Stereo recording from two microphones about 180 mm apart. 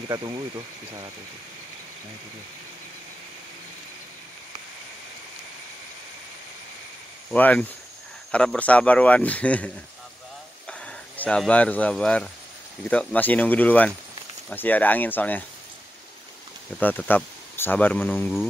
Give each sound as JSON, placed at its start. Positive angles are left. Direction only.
{"t": 0.1, "sound": "speech", "side_deg": -20}
{"t": 7.2, "sound": "speech", "side_deg": 10}
{"t": 10.7, "sound": "speech", "side_deg": 5}
{"t": 16.8, "sound": "speech", "side_deg": 10}